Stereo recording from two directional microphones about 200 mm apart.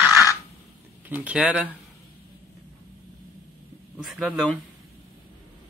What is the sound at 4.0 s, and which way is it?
Speech, centre (ahead or behind).